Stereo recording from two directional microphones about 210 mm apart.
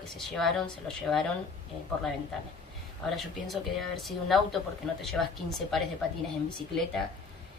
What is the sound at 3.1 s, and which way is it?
Speech, centre (ahead or behind).